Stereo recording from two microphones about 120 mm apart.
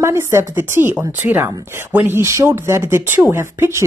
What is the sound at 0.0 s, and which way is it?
A woman's voice, 20° right (ahead or behind).